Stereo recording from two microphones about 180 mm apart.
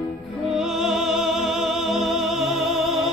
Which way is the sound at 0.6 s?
5° right (ahead or behind).